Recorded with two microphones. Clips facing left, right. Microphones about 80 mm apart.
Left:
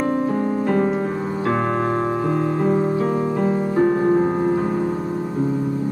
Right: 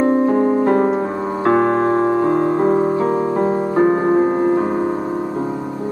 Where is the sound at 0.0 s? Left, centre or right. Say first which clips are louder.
Right 6 dB; right.